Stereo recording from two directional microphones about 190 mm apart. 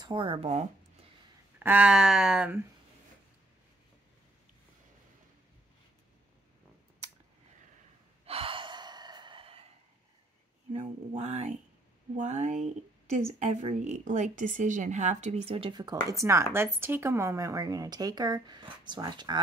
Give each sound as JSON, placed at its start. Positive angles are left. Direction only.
{"t": 0.0, "sound": "speech", "side_deg": -25}
{"t": 1.6, "sound": "speech", "side_deg": -10}
{"t": 8.3, "sound": "gasp", "side_deg": -30}
{"t": 10.7, "sound": "speech", "side_deg": -35}